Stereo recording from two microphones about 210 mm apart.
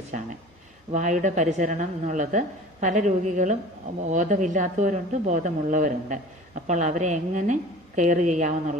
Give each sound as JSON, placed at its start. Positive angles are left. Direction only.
{"t": 0.9, "sound": "speech", "side_deg": -35}